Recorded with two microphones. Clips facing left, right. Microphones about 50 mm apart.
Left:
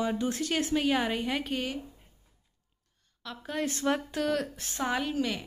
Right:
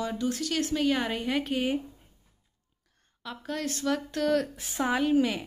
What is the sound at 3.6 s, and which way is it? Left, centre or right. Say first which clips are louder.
Speech: even; left.